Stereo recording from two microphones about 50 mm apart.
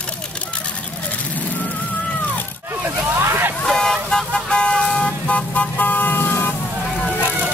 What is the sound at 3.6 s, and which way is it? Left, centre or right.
Vehicle, centre.